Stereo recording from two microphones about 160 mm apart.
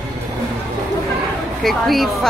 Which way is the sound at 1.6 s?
Centre (ahead or behind).